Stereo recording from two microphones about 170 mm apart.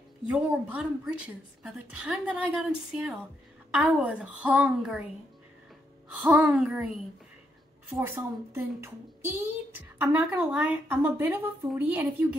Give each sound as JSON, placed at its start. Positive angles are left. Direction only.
{"t": 0.3, "sound": "a child's voice", "side_deg": -5}
{"t": 6.1, "sound": "a child's voice", "side_deg": -5}
{"t": 7.9, "sound": "a child's voice", "side_deg": -15}